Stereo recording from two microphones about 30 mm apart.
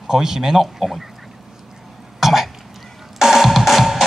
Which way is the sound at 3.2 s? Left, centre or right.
Centre.